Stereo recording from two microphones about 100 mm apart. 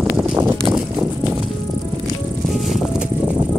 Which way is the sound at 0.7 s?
10° right (ahead or behind).